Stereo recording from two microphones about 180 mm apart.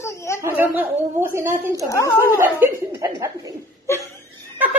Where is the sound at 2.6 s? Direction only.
15° right (ahead or behind).